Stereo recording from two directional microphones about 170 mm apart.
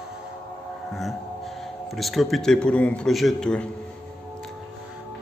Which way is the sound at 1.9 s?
Centre (ahead or behind).